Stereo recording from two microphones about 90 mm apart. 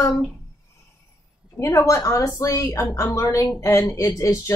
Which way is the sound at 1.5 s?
35° left (ahead or behind).